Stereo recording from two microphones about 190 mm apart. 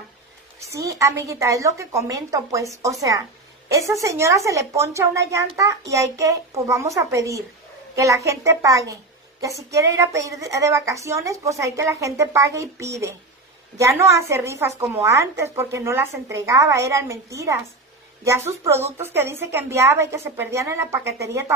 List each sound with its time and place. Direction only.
0.6 s speech: 15° right (ahead or behind)